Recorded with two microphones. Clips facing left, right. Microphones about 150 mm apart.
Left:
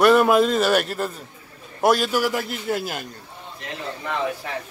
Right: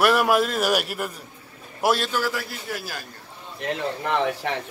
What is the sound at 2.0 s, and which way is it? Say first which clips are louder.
A man's voice: left 4 dB; 15° left (ahead or behind).